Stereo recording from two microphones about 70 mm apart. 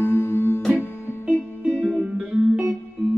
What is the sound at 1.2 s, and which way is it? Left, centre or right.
Music, centre.